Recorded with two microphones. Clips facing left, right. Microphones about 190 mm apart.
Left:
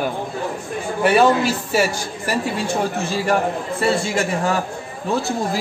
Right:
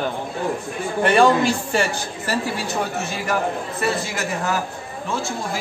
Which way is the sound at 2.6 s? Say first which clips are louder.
Left 3 dB; 30° left (ahead or behind).